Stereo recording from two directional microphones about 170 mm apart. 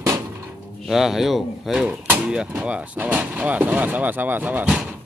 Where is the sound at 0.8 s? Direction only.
Centre (ahead or behind).